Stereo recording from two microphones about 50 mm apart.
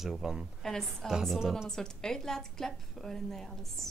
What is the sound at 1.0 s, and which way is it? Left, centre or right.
A woman's voice, centre.